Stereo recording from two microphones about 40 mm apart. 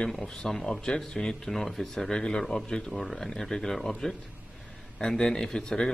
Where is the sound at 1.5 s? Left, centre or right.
Centre.